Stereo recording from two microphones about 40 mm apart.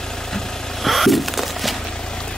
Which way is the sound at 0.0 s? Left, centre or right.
Centre.